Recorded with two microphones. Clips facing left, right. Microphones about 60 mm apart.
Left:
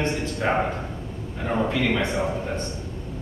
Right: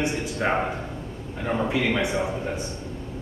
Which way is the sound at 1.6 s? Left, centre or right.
Centre.